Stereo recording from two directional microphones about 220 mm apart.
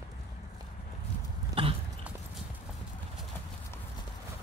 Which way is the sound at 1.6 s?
25° right (ahead or behind).